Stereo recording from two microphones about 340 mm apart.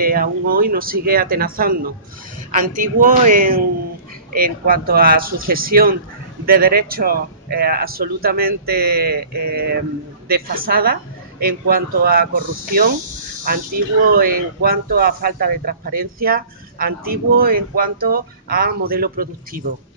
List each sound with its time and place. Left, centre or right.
0.0 s speech: right
14.0 s speech: right